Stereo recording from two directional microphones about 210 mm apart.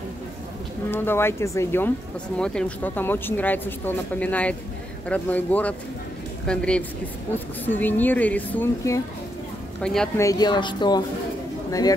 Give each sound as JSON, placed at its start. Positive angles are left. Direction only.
{"t": 0.9, "sound": "a woman's voice", "side_deg": 10}
{"t": 10.2, "sound": "speech", "side_deg": 20}